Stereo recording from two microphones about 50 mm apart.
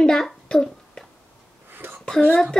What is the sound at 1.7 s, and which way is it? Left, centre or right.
Whispering, right.